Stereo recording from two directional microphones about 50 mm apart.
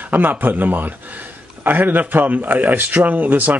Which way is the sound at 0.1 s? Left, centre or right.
Right.